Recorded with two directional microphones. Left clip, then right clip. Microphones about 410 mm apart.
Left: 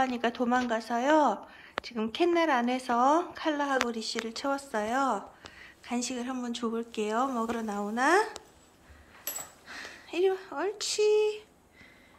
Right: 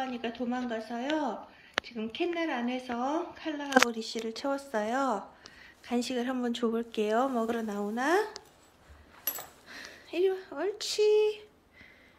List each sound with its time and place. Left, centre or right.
0.0 s a woman's voice: centre
9.7 s speech: centre